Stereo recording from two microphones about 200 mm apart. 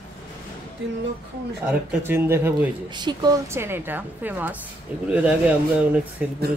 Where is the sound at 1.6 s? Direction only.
10° right (ahead or behind).